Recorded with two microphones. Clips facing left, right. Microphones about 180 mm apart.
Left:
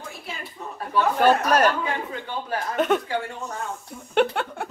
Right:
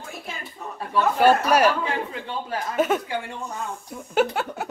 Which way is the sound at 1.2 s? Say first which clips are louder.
Right 1 dB; 10° right (ahead or behind).